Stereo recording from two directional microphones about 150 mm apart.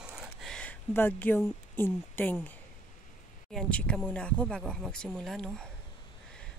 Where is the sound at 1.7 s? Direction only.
15° left (ahead or behind).